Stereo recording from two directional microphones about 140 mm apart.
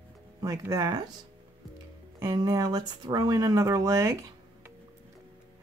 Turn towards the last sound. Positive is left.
turn(degrees=-20)  # may be behind; listen again after turning